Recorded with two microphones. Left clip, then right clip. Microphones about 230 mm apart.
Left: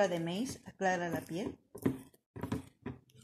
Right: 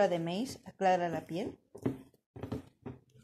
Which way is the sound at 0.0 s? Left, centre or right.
Centre.